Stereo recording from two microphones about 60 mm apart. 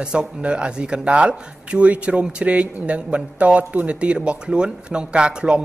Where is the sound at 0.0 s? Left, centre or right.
Centre.